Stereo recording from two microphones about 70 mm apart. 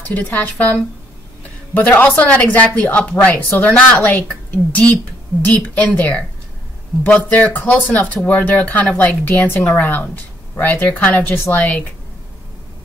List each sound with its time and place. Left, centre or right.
0.1 s speech: left
5.4 s speech: left